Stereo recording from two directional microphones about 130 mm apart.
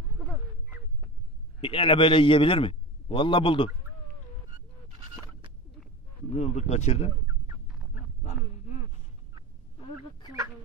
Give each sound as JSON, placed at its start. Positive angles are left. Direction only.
{"t": 1.6, "sound": "a man's voice", "side_deg": 40}
{"t": 6.3, "sound": "speech", "side_deg": 60}
{"t": 8.2, "sound": "a sound", "side_deg": 70}